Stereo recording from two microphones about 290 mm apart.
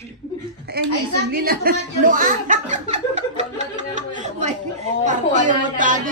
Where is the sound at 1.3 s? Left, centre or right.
Right.